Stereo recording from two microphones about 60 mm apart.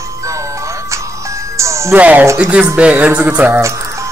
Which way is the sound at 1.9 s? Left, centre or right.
Right.